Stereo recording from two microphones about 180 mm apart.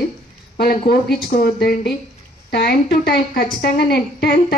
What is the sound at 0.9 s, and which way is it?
A woman's voice, 60° left (ahead or behind).